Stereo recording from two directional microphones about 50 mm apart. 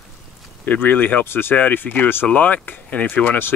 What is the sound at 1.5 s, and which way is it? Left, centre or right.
Speech, left.